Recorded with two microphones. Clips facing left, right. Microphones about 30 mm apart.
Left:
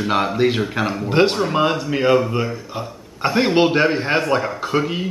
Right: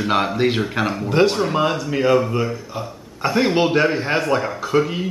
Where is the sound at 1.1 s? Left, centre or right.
Centre.